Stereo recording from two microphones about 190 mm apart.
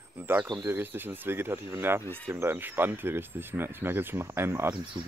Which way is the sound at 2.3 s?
10° right (ahead or behind).